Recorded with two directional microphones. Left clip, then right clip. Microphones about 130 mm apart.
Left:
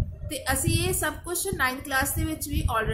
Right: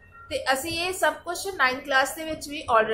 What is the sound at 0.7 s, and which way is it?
A woman's voice, 25° left (ahead or behind).